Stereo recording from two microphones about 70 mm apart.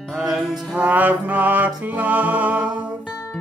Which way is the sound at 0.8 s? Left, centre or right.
Right.